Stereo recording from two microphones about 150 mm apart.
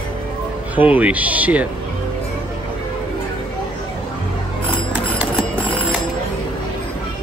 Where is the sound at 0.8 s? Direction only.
10° right (ahead or behind).